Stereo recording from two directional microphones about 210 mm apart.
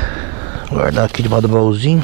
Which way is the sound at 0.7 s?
20° right (ahead or behind).